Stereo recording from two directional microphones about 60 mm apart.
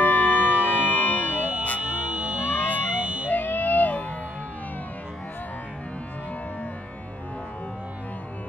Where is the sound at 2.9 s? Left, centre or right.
Right.